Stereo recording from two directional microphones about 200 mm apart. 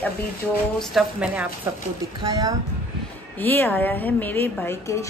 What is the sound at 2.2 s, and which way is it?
Speech, 20° right (ahead or behind).